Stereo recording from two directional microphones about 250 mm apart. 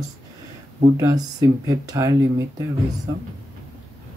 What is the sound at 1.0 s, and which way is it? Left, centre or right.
Speech, centre.